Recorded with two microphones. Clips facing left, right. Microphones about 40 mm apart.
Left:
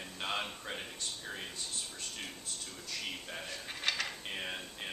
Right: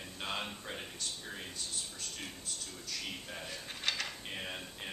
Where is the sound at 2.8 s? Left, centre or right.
Centre.